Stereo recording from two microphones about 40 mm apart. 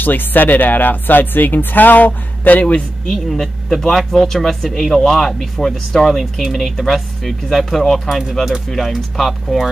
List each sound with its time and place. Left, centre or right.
0.0 s speech: left
3.1 s speech: centre
8.1 s speech: centre
8.6 s speech: centre